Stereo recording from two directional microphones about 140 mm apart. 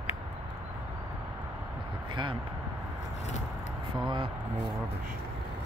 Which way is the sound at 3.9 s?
35° right (ahead or behind).